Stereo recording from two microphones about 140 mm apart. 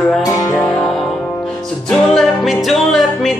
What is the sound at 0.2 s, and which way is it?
Music, 25° left (ahead or behind).